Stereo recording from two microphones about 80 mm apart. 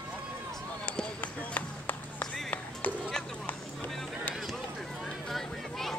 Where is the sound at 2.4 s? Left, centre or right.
Centre.